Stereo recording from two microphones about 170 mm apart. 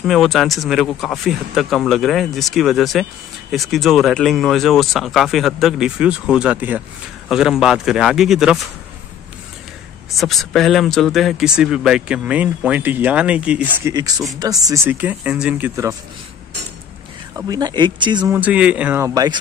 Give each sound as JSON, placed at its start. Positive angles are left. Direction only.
{"t": 0.0, "sound": "speech", "side_deg": 0}
{"t": 10.2, "sound": "speech", "side_deg": 0}
{"t": 13.9, "sound": "speech", "side_deg": -20}
{"t": 17.4, "sound": "speech", "side_deg": -25}
{"t": 18.3, "sound": "speech", "side_deg": -10}